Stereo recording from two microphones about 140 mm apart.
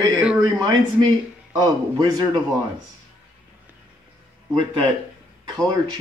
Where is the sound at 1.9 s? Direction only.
30° right (ahead or behind).